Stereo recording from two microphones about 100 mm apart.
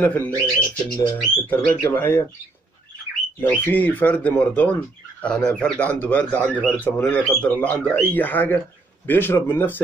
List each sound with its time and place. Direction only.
0.0 s speech: 15° left (ahead or behind)
3.4 s speech: 15° left (ahead or behind)